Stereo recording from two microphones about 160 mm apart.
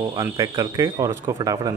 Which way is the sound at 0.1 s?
20° right (ahead or behind).